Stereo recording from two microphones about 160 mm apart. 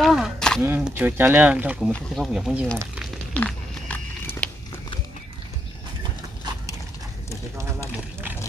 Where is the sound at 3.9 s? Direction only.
10° left (ahead or behind).